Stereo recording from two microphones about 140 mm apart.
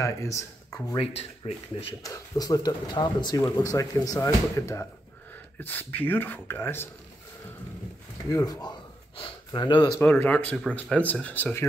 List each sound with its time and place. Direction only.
0.0 s speech: 20° left (ahead or behind)
0.9 s speech: 45° left (ahead or behind)
2.0 s speech: 25° left (ahead or behind)
8.3 s speech: 25° left (ahead or behind)
9.9 s speech: 10° left (ahead or behind)